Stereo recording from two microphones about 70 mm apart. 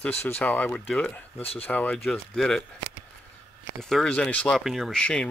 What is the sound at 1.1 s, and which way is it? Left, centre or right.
Speech, left.